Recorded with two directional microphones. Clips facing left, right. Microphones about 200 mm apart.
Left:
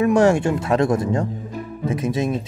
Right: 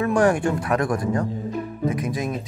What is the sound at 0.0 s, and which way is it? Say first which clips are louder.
Speech: left 3 dB; 25° left (ahead or behind).